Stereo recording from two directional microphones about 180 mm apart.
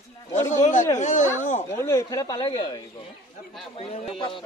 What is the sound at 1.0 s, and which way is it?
Speech, 40° left (ahead or behind).